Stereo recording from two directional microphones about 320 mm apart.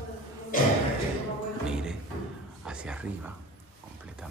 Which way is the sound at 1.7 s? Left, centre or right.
Centre.